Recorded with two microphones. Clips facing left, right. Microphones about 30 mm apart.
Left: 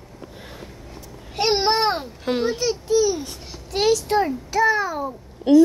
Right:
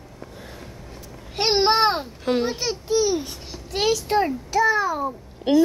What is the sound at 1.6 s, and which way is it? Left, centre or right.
Speech, centre.